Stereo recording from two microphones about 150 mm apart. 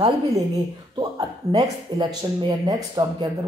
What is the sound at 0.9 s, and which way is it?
Speech, 25° right (ahead or behind).